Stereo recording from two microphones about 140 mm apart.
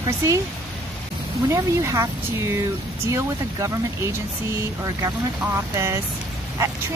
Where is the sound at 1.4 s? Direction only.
20° right (ahead or behind).